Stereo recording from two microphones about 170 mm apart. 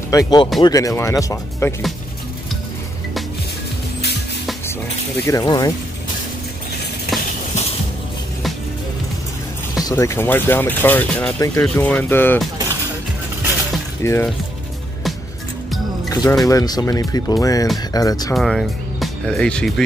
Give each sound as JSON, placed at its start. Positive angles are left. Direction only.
{"t": 0.1, "sound": "speech", "side_deg": 20}
{"t": 5.2, "sound": "speech", "side_deg": 20}
{"t": 9.8, "sound": "speech", "side_deg": 15}
{"t": 14.0, "sound": "speech", "side_deg": 15}
{"t": 16.1, "sound": "speech", "side_deg": 20}
{"t": 18.3, "sound": "speech", "side_deg": 0}